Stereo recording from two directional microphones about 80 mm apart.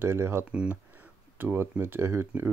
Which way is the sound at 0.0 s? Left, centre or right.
Right.